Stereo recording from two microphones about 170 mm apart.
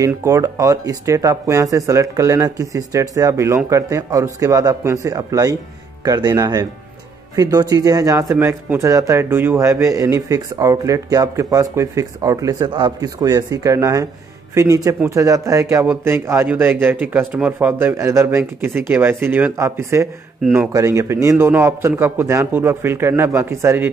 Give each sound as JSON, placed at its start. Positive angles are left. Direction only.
{"t": 0.0, "sound": "a man's voice", "side_deg": -20}